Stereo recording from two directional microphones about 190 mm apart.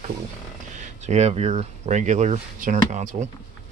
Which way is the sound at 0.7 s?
35° right (ahead or behind).